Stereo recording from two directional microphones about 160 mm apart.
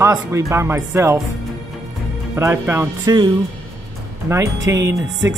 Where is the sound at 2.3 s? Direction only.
15° right (ahead or behind).